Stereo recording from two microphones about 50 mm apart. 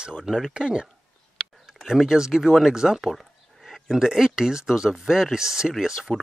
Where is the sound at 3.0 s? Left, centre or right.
Centre.